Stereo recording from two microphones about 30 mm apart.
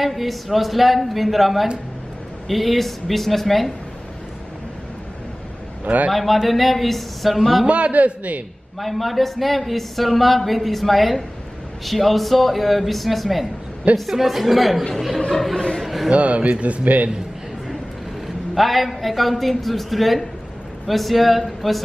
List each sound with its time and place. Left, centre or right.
0.0 s speech: centre
6.1 s speech: centre
7.6 s a man's voice: right
8.7 s speech: centre
13.9 s speech: right
14.2 s speech: centre
15.8 s a sound: centre
16.1 s speech: right
16.8 s a man's voice: right
18.5 s speech: centre